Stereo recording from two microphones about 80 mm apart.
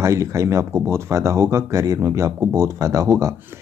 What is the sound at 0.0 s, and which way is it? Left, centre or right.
Speech, right.